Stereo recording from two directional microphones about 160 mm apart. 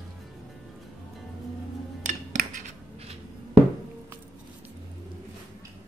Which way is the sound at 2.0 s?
50° right (ahead or behind).